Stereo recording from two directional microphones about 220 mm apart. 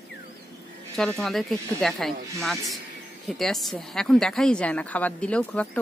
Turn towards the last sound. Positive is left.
turn(degrees=5)  # may be behind; listen again after turning